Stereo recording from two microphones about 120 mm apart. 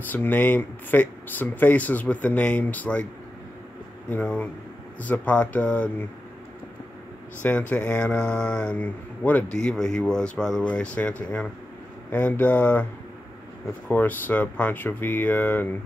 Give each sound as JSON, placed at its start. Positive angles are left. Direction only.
{"t": 0.1, "sound": "speech", "side_deg": 15}
{"t": 4.1, "sound": "speech", "side_deg": 10}
{"t": 7.4, "sound": "speech", "side_deg": 15}
{"t": 13.8, "sound": "speech", "side_deg": 15}